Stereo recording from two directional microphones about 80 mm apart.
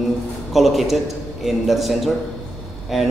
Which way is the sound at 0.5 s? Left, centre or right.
Centre.